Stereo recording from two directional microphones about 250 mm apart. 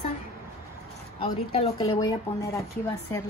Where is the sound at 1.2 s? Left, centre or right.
Centre.